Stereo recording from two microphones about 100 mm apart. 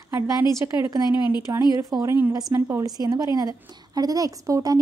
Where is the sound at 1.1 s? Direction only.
50° left (ahead or behind).